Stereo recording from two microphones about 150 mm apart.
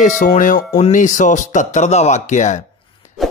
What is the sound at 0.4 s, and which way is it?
Speech, 60° left (ahead or behind).